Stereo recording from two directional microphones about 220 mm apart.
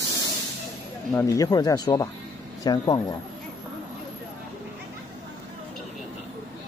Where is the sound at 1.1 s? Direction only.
15° left (ahead or behind).